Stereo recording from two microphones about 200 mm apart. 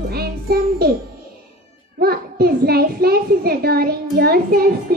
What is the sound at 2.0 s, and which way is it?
Music, 50° right (ahead or behind).